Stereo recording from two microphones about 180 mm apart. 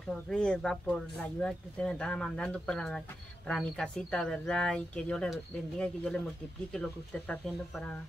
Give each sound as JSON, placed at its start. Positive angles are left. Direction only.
{"t": 0.1, "sound": "speech", "side_deg": 5}
{"t": 7.4, "sound": "speech", "side_deg": 5}